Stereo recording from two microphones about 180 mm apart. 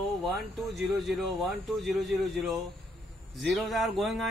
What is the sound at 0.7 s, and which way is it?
Speech, centre (ahead or behind).